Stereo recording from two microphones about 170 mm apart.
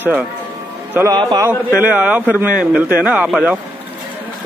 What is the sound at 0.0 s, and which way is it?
Speech, 10° right (ahead or behind).